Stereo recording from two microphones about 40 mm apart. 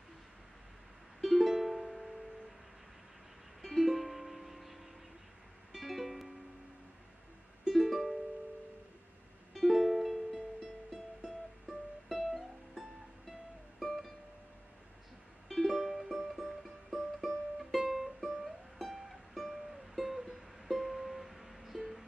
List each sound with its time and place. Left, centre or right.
1.2 s music: centre
3.6 s music: centre
5.8 s music: centre
7.6 s music: centre
9.5 s music: centre
12.1 s music: centre
15.4 s music: centre
15.7 s music: centre